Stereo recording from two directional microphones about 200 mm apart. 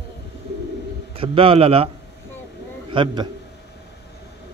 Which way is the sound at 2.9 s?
25° right (ahead or behind).